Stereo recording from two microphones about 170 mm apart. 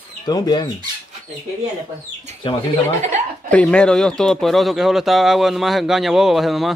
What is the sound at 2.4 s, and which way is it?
Speech, 30° left (ahead or behind).